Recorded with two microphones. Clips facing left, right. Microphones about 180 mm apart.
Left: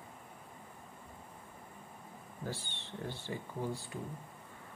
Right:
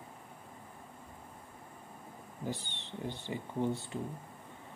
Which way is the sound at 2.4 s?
15° right (ahead or behind).